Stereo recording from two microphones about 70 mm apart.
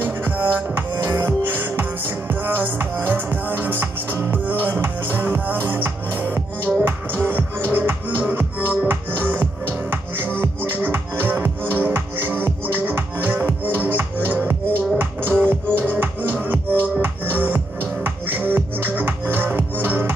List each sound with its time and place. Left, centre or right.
0.0 s music: right